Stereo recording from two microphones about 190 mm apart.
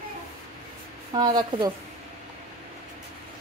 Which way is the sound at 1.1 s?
25° right (ahead or behind).